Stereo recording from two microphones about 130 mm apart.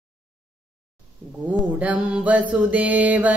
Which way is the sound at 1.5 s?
10° right (ahead or behind).